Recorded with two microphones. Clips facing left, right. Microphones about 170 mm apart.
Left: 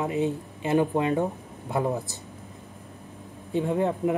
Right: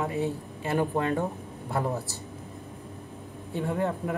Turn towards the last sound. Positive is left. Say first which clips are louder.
# left 4 dB
turn(degrees=20)  # may be behind; listen again after turning